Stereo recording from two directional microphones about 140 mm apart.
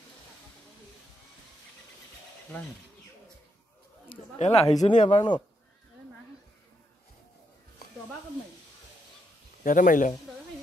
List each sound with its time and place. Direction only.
4.4 s speech: 45° left (ahead or behind)
4.8 s speech: 55° left (ahead or behind)
9.6 s a man's voice: 70° left (ahead or behind)